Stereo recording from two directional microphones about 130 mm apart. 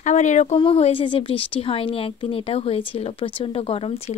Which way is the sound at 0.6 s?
50° left (ahead or behind).